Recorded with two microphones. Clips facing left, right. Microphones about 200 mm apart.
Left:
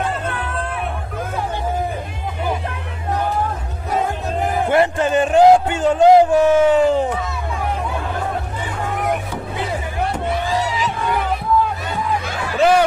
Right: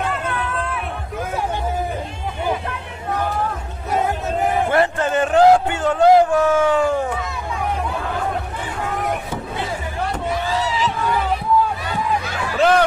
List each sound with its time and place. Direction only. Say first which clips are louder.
4.6 s music: left 2 dB; 15° left (ahead or behind)
12.5 s music: left 1 dB; 10° left (ahead or behind)